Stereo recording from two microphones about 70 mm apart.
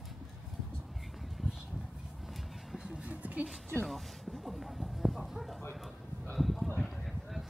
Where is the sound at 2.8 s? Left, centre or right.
Centre.